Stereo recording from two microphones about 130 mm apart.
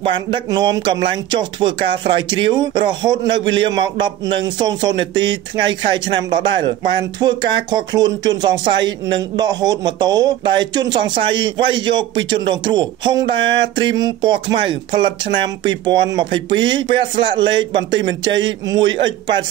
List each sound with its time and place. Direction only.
0.0 s speech: 40° right (ahead or behind)